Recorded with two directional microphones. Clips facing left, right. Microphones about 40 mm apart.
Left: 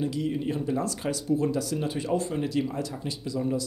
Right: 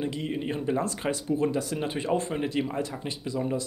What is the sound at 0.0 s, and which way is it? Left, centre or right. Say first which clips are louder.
Speech: left 2 dB; right.